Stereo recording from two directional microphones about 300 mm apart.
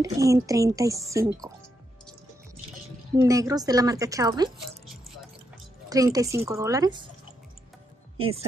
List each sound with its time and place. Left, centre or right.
0.0 s speech: centre
3.2 s speech: centre
5.9 s speech: centre
8.2 s speech: centre